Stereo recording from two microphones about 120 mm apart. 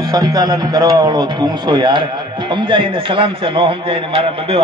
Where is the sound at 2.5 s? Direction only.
45° right (ahead or behind).